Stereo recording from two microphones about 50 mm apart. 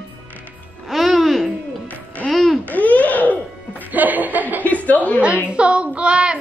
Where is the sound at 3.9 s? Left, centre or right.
Right.